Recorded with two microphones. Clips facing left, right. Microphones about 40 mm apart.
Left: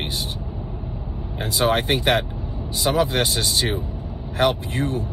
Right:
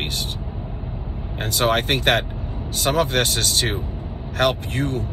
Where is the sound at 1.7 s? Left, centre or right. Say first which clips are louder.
Right 1 dB; right.